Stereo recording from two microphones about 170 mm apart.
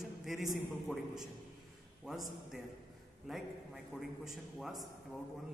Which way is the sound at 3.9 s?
Centre (ahead or behind).